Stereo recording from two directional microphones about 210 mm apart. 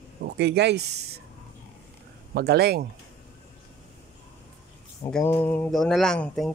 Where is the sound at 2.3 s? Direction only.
50° right (ahead or behind).